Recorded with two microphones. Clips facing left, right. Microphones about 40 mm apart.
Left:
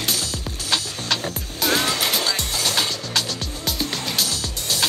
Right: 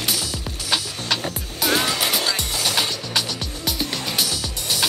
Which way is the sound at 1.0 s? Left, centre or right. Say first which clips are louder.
Even; centre.